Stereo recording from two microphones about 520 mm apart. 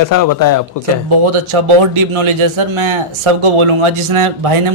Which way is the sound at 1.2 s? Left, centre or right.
Right.